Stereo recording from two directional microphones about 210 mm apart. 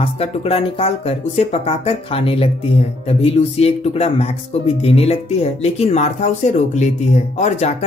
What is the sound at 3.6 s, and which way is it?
Speech, 30° left (ahead or behind).